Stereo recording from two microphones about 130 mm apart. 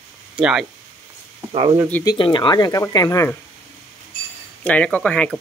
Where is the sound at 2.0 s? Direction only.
35° left (ahead or behind).